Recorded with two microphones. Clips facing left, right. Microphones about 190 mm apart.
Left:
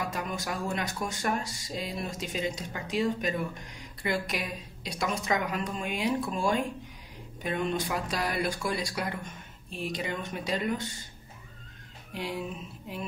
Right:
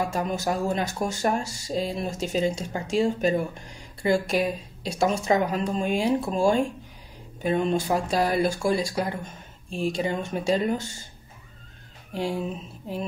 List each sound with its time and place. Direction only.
0.1 s a woman's voice: 40° right (ahead or behind)
7.4 s a woman's voice: 30° right (ahead or behind)
12.1 s speech: 30° right (ahead or behind)